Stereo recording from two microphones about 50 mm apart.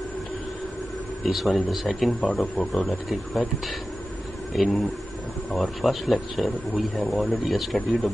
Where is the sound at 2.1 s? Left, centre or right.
Left.